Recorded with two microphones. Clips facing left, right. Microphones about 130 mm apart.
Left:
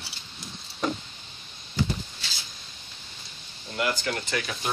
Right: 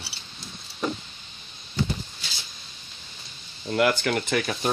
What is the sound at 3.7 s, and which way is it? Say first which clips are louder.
Speech: right 6 dB; 75° right (ahead or behind).